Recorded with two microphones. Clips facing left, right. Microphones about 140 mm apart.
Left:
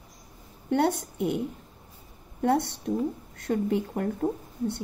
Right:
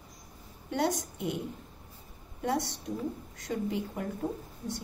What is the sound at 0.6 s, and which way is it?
Speech, 60° left (ahead or behind).